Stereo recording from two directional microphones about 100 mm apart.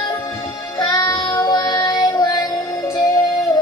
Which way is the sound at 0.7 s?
45° left (ahead or behind).